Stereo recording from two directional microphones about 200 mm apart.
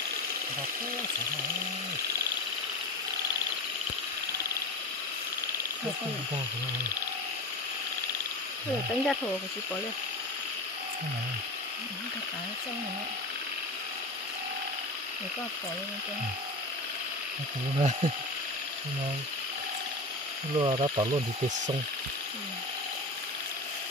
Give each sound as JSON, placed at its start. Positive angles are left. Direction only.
{"t": 9.0, "sound": "speech", "side_deg": 0}
{"t": 17.7, "sound": "speech", "side_deg": -30}
{"t": 20.5, "sound": "speech", "side_deg": -25}